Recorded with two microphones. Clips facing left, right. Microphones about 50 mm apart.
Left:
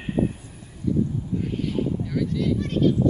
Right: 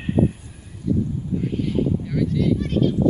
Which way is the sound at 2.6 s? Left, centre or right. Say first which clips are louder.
Even; centre.